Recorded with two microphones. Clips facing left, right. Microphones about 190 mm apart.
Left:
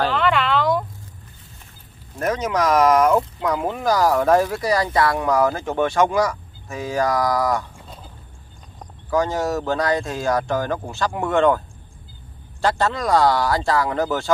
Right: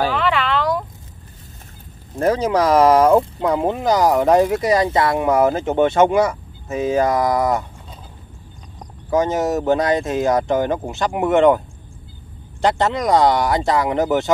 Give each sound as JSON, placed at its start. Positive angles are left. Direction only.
{"t": 0.0, "sound": "a sound", "side_deg": -5}
{"t": 2.1, "sound": "speech", "side_deg": -30}
{"t": 9.1, "sound": "speech", "side_deg": -20}
{"t": 12.6, "sound": "speech", "side_deg": -20}